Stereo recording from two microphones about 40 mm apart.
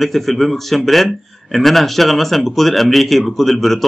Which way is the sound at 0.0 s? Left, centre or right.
Centre.